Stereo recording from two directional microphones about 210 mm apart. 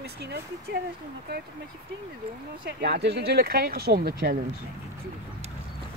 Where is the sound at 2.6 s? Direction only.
50° right (ahead or behind).